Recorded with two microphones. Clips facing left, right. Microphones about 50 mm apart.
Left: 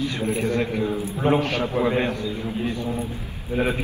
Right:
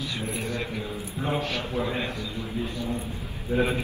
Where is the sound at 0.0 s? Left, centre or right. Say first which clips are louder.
Left 7 dB; left.